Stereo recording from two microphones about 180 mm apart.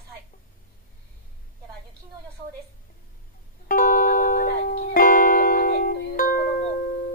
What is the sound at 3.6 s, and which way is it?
Music, 50° left (ahead or behind).